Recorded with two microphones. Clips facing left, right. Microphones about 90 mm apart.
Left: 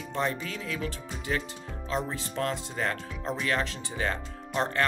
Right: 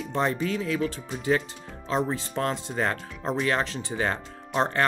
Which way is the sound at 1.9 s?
35° right (ahead or behind).